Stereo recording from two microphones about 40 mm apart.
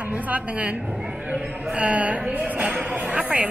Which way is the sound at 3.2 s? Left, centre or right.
Right.